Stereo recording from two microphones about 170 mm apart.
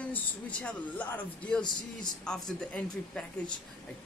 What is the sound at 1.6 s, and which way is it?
Speech, 25° left (ahead or behind).